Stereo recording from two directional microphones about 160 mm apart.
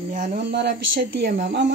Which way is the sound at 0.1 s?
50° right (ahead or behind).